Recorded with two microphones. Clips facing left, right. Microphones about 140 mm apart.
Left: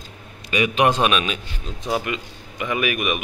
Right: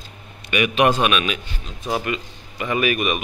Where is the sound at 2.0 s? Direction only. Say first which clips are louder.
Right 2 dB; 15° left (ahead or behind).